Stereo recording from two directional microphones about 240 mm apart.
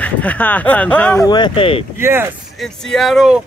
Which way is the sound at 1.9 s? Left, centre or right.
Centre.